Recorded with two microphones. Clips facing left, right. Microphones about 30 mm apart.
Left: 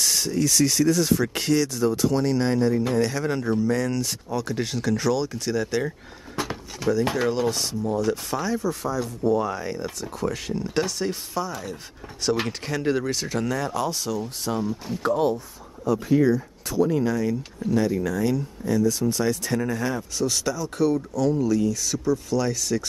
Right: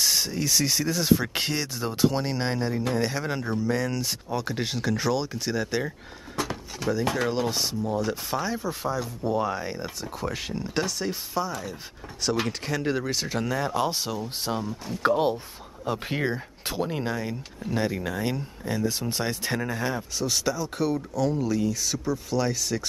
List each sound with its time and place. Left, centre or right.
0.0 s speech: centre
6.3 s a sound: centre
7.2 s speech: centre; by 14.2 s right
14.6 s speech: centre
15.0 s speech: right
16.9 s speech: right
19.6 s speech: centre